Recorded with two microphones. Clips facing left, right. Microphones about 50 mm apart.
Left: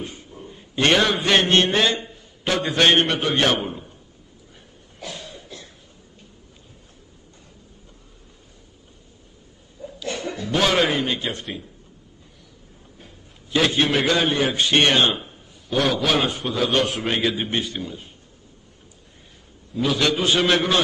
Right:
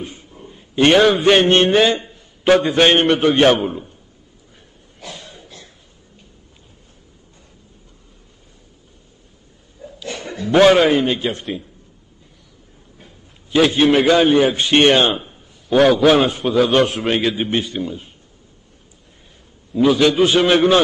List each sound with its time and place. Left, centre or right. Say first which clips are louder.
0.3 s a sound: even; centre
0.8 s a man's voice: right 7 dB; centre
1.5 s a man's voice: right 5 dB; right
3.0 s a man's voice: right 7 dB; centre
10.3 s a man's voice: right 10 dB; right
10.7 s a man's voice: right 7 dB; centre
11.1 s a man's voice: right 6 dB; right
13.0 s a man's voice: right 2 dB; centre
15.2 s a sound: right 7 dB; centre
16.4 s a man's voice: right 7 dB; centre
17.5 s a man's voice: right 5 dB; centre
17.7 s a man's voice: right 6 dB; centre
19.7 s a man's voice: right 7 dB; centre